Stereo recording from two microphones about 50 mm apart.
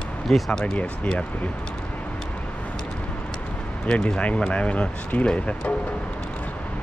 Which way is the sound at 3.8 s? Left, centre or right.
Centre.